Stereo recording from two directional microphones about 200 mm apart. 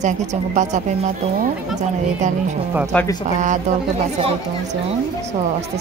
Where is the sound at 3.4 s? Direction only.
40° right (ahead or behind).